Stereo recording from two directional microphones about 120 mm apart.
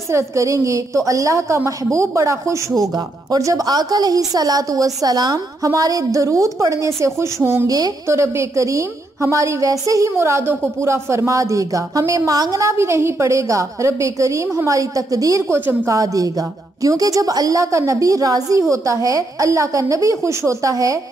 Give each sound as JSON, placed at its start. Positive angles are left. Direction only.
{"t": 0.1, "sound": "a woman's voice", "side_deg": -25}